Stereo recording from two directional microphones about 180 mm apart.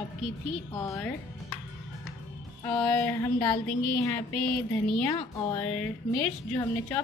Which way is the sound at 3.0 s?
20° left (ahead or behind).